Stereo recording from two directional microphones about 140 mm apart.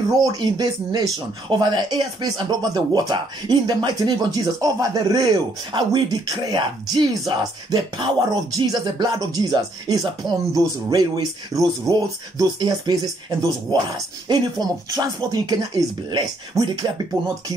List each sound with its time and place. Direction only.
0.2 s speech: 30° right (ahead or behind)